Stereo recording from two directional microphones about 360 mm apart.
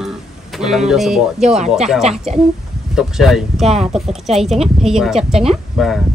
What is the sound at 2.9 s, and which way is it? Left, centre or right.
Chopping, centre.